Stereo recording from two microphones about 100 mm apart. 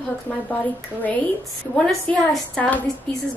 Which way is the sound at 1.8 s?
5° left (ahead or behind).